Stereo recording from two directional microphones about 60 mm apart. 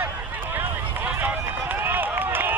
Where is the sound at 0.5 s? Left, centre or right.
Right.